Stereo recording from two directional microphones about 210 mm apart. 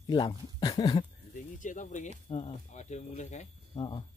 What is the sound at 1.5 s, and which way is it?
Speech, 35° left (ahead or behind).